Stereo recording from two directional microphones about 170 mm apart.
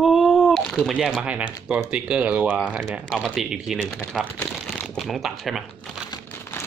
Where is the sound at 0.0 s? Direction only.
Centre (ahead or behind).